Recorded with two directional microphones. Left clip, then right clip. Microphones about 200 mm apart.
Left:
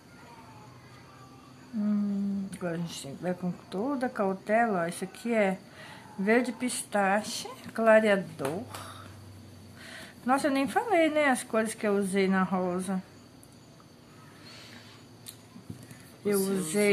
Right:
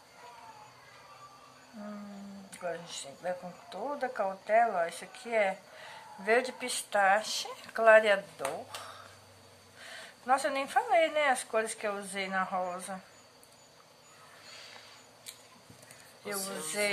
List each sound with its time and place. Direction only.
2.5 s speech: 15° left (ahead or behind)
9.8 s speech: 10° left (ahead or behind)
16.3 s a sound: centre (ahead or behind)